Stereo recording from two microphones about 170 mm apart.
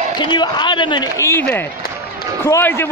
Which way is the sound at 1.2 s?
15° left (ahead or behind).